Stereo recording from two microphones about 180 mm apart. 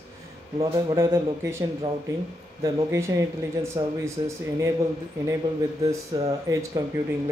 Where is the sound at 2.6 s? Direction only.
20° right (ahead or behind).